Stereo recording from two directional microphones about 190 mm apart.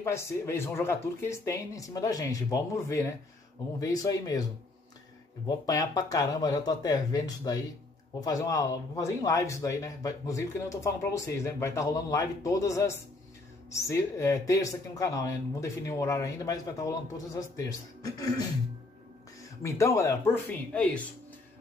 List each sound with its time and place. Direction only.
0.0 s speech: 15° left (ahead or behind)
5.7 s speech: 20° left (ahead or behind)
19.6 s speech: 15° left (ahead or behind)